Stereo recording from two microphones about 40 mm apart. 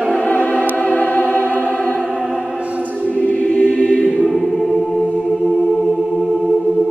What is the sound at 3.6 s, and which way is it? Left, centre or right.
Choir, left.